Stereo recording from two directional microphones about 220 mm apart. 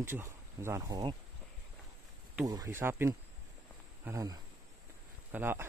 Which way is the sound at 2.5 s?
15° right (ahead or behind).